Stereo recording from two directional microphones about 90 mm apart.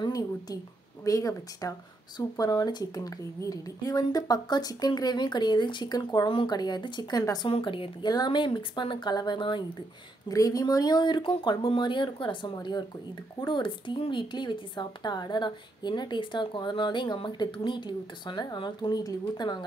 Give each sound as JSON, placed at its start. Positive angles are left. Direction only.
{"t": 1.0, "sound": "speech", "side_deg": 40}
{"t": 6.2, "sound": "speech", "side_deg": 60}
{"t": 7.4, "sound": "speech", "side_deg": 75}
{"t": 8.1, "sound": "a woman's voice", "side_deg": 55}
{"t": 10.2, "sound": "a woman's voice", "side_deg": 40}
{"t": 12.5, "sound": "speech", "side_deg": 55}
{"t": 13.5, "sound": "a woman's voice", "side_deg": 65}